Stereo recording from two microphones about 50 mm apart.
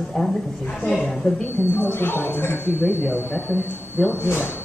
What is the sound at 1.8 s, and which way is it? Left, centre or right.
Speech, left.